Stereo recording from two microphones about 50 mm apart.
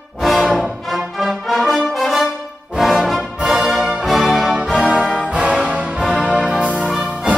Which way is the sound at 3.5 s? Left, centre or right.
Centre.